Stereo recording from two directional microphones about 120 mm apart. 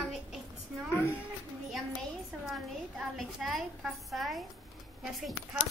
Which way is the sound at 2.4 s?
Centre (ahead or behind).